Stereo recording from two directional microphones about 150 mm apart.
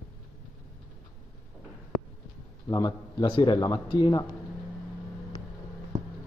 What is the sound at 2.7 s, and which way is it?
Speech, 25° left (ahead or behind).